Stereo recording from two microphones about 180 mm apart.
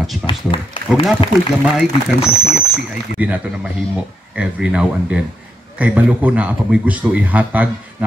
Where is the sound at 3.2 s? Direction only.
10° right (ahead or behind).